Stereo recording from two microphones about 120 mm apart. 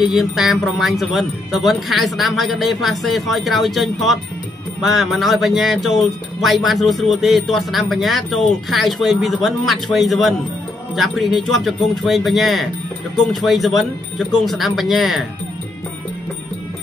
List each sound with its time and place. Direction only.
0.0 s speech: centre (ahead or behind)